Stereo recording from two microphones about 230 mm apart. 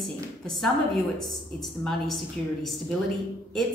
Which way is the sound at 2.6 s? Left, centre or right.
Centre.